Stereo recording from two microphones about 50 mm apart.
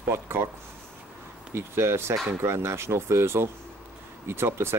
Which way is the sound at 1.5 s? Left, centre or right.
Right.